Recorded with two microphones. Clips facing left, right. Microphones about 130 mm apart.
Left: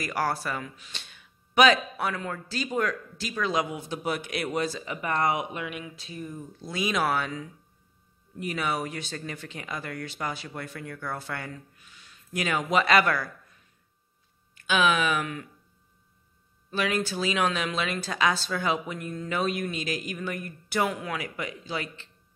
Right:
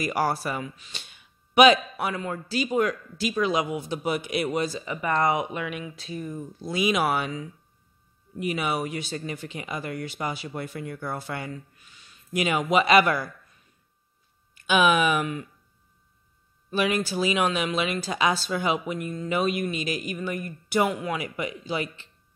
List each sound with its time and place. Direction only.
0.0 s speech: 15° right (ahead or behind)
5.8 s speech: 35° right (ahead or behind)
6.6 s speech: 10° right (ahead or behind)
14.7 s speech: 10° right (ahead or behind)
16.7 s speech: 10° right (ahead or behind)